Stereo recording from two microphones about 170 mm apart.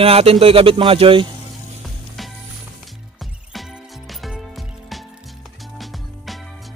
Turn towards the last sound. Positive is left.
turn(degrees=0)  # may be behind; listen again after turning